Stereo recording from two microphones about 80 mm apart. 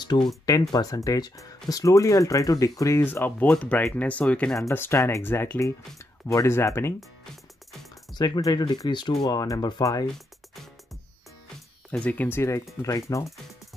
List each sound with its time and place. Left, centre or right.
0.0 s speech: left
0.5 s speech: left
3.0 s speech: left
4.7 s speech: left
8.4 s speech: left
10.1 s music: centre
12.0 s speech: centre
12.4 s speech: left